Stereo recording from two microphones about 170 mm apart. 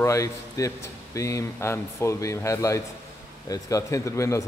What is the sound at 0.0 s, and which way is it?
A man's voice, 20° left (ahead or behind).